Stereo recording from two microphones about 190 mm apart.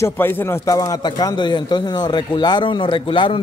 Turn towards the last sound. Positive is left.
turn(degrees=25)  # may be behind; listen again after turning